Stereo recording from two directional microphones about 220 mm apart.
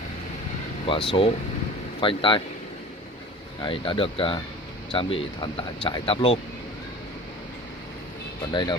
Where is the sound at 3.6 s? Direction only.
25° left (ahead or behind).